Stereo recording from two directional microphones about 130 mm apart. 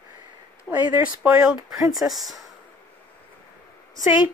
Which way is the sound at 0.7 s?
10° right (ahead or behind).